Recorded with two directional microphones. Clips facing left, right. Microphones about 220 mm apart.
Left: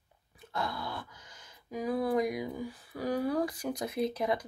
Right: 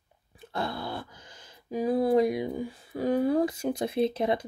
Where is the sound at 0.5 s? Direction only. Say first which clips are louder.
Right 4 dB; 30° right (ahead or behind).